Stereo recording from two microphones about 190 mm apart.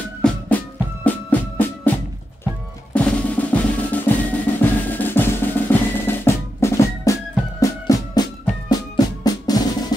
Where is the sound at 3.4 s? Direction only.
10° left (ahead or behind).